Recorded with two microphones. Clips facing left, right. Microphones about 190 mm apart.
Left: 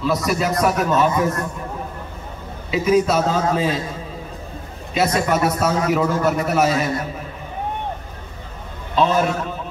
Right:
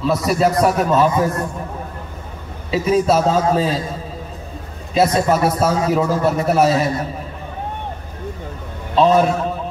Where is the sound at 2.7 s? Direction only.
30° right (ahead or behind).